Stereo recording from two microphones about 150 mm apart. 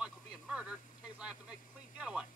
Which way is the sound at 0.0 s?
5° right (ahead or behind).